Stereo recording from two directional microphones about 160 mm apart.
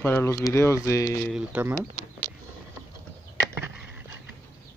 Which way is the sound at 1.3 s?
10° right (ahead or behind).